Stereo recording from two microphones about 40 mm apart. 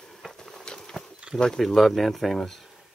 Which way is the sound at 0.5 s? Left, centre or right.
Centre.